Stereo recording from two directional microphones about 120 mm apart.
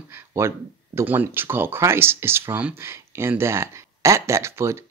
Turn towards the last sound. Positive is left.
turn(degrees=-20)  # may be behind; listen again after turning